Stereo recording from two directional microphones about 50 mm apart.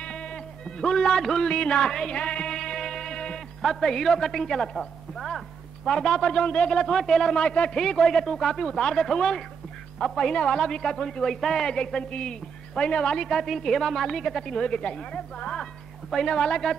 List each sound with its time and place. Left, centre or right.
0.0 s music: centre
3.6 s a man's voice: centre
7.7 s a man's voice: centre
13.3 s a woman's voice: centre
14.5 s a man's voice: centre
16.3 s a woman's voice: left